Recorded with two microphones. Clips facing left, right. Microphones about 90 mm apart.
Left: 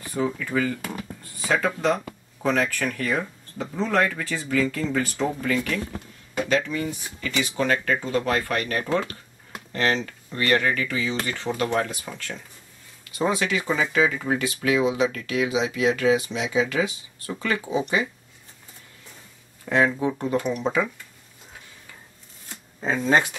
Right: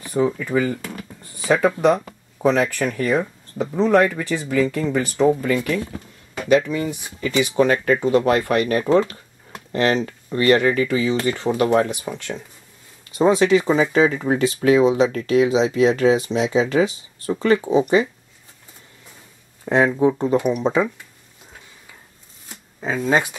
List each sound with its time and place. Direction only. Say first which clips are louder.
0.0 s speech: right 6 dB; 15° right (ahead or behind)
13.2 s speech: right 9 dB; 30° right (ahead or behind)
19.6 s speech: right 5 dB; 20° right (ahead or behind)
20.3 s speech: right 5 dB; 10° right (ahead or behind)
22.8 s speech: right 1 dB; 5° right (ahead or behind)